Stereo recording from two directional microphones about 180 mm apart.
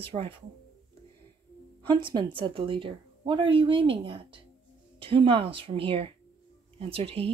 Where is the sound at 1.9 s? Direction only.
25° right (ahead or behind).